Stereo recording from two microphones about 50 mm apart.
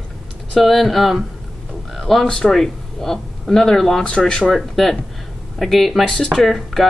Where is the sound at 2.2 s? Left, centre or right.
Centre.